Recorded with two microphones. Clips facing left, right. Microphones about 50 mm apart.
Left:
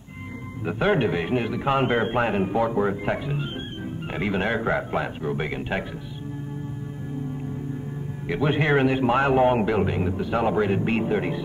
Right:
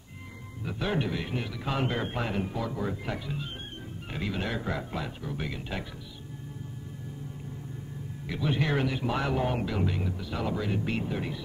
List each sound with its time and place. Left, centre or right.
0.7 s a man's voice: left
8.3 s a man's voice: left